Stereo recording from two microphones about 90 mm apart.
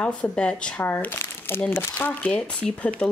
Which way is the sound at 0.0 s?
15° left (ahead or behind).